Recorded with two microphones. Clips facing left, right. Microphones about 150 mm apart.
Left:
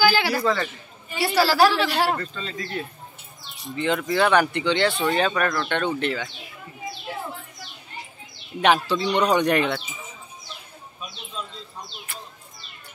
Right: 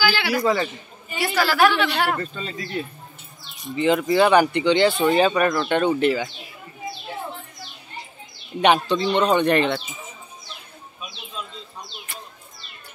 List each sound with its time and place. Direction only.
0.0 s a sound: 45° left (ahead or behind)
0.3 s a man's voice: 10° right (ahead or behind)
1.2 s a woman's voice: 30° left (ahead or behind)
2.1 s speech: 10° right (ahead or behind)
8.5 s speech: centre (ahead or behind)
12.1 s speech: centre (ahead or behind)